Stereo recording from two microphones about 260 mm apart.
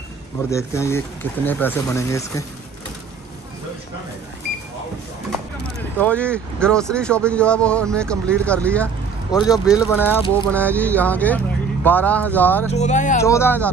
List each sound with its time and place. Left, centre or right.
0.5 s speech: centre
5.9 s speech: centre
9.7 s speech: centre
12.7 s speech: left
13.2 s speech: centre